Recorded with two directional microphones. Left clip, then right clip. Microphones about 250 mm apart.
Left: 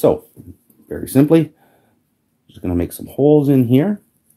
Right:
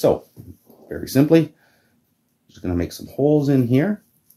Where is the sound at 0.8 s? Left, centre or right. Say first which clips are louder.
Left 3 dB; left.